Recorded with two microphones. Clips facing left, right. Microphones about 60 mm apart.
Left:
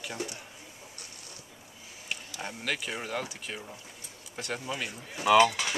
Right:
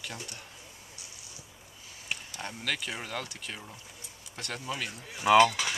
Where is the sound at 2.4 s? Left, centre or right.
Centre.